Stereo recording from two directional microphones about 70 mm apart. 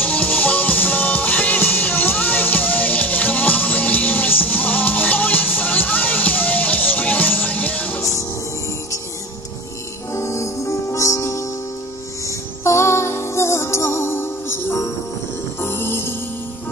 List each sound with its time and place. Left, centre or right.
0.0 s music: left
8.0 s music: left
10.1 s music: left
12.6 s music: left